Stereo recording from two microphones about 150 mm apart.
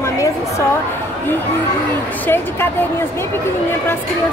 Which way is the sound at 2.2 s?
15° left (ahead or behind).